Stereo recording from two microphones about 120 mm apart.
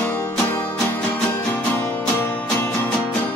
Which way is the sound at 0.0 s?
15° left (ahead or behind).